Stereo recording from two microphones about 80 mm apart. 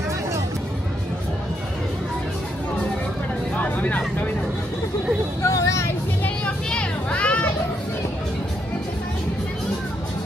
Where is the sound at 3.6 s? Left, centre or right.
Left.